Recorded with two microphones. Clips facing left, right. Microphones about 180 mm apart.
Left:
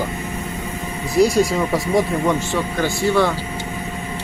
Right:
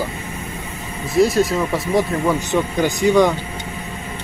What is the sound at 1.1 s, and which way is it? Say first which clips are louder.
Speech: even; centre (ahead or behind).